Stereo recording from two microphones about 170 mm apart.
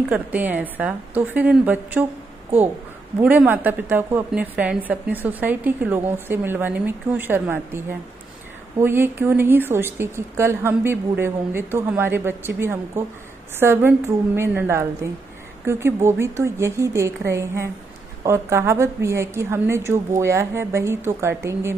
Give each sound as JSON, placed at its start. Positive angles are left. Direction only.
{"t": 0.1, "sound": "a woman's voice", "side_deg": -10}
{"t": 3.2, "sound": "a woman's voice", "side_deg": -10}